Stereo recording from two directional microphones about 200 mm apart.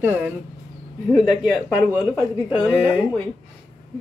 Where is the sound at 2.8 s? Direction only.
5° right (ahead or behind).